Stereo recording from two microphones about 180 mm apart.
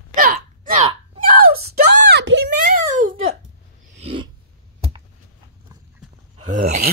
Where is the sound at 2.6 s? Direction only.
45° right (ahead or behind).